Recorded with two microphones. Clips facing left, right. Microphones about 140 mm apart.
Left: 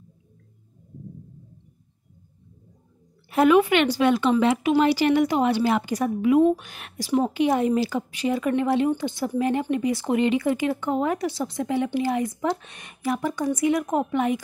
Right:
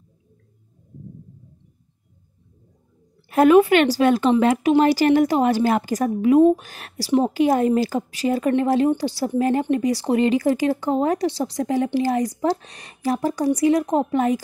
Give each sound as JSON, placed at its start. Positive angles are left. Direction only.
{"t": 3.3, "sound": "a woman's voice", "side_deg": -45}